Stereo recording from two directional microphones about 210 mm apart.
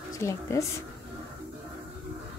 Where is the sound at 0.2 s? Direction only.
15° left (ahead or behind).